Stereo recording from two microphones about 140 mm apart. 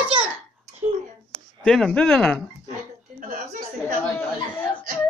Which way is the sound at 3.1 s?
75° right (ahead or behind).